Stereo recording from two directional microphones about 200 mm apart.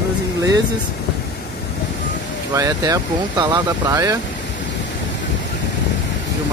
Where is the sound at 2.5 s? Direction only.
15° right (ahead or behind).